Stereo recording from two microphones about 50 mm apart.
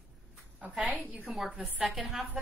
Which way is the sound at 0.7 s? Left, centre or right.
Centre.